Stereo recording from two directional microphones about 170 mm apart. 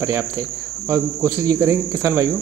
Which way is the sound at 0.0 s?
15° right (ahead or behind).